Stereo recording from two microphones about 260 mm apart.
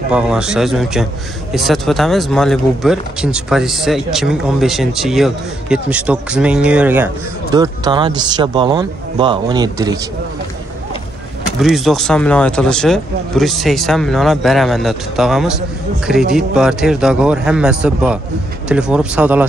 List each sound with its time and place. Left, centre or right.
0.1 s speech: centre
11.6 s speech: centre